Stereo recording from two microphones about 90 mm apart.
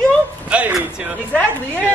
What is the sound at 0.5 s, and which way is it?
Speech, 10° right (ahead or behind).